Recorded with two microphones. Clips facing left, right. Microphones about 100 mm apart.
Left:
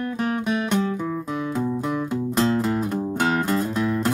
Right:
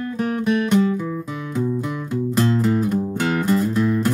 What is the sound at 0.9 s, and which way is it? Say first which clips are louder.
Music: even; 20° left (ahead or behind).